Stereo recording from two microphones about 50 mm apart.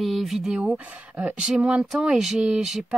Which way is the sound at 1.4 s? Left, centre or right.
Centre.